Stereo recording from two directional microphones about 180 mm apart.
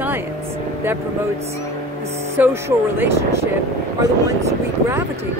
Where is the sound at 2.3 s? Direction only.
15° right (ahead or behind).